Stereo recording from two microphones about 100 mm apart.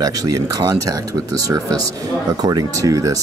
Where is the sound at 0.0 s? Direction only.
40° right (ahead or behind).